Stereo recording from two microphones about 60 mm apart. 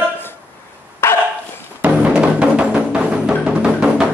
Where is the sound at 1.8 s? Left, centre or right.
Right.